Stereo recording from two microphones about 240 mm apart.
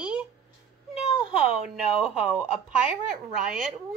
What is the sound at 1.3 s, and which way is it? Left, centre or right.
Speech, centre.